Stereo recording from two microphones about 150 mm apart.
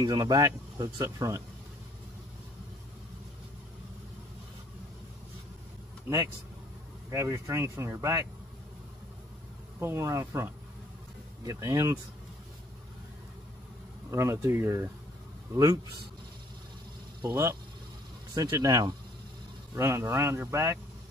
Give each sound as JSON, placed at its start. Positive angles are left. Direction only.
{"t": 0.0, "sound": "speech", "side_deg": -25}
{"t": 6.0, "sound": "speech", "side_deg": -15}
{"t": 9.8, "sound": "speech", "side_deg": -15}
{"t": 14.1, "sound": "speech", "side_deg": -20}
{"t": 17.2, "sound": "speech", "side_deg": -25}